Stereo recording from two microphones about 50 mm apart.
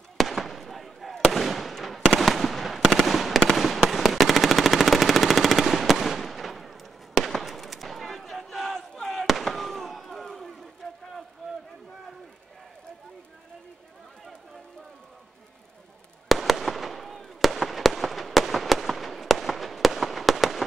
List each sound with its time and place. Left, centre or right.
0.2 s fireworks: centre
3.2 s machine gun: centre
9.2 s fireworks: centre
16.3 s fireworks: centre